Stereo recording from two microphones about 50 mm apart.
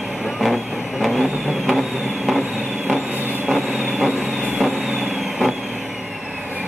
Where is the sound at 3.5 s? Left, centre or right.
Centre.